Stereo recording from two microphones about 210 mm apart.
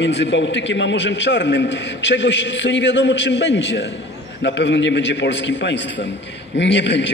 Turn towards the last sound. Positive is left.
turn(degrees=60)  # may be behind; listen again after turning